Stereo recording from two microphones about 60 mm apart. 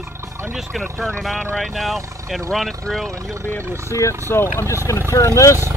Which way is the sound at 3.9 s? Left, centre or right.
Left.